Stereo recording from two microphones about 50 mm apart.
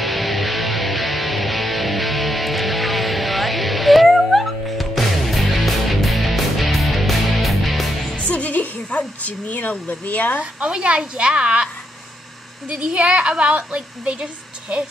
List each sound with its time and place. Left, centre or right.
0.0 s music: centre
8.2 s a sound: left
10.4 s a woman's voice: right